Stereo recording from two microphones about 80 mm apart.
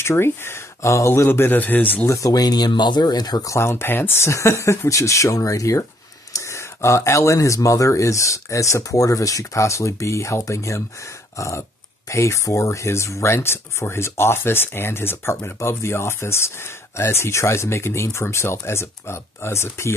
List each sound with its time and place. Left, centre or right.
0.0 s speech: left
2.0 s speech: left
3.5 s speech: left